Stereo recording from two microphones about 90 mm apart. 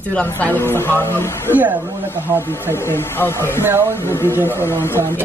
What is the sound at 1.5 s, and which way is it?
Speech, 20° right (ahead or behind).